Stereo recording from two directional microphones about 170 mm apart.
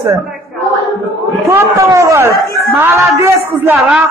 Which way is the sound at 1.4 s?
15° right (ahead or behind).